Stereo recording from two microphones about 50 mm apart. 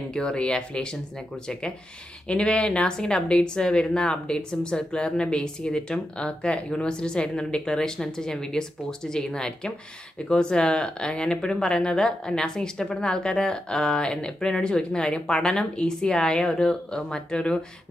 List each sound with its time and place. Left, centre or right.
0.1 s speech: centre
2.2 s speech: left